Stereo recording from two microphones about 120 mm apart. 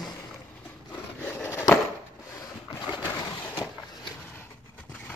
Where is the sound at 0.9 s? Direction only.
15° left (ahead or behind).